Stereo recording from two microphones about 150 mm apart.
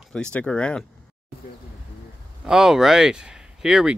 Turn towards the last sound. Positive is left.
turn(degrees=-5)  # may be behind; listen again after turning